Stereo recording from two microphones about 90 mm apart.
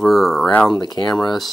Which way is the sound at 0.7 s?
45° left (ahead or behind).